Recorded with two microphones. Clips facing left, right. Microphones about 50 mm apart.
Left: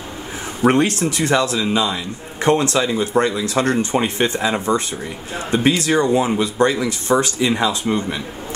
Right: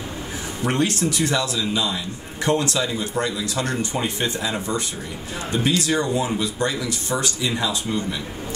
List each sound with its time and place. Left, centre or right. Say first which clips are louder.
0.6 s speech: left 6 dB; left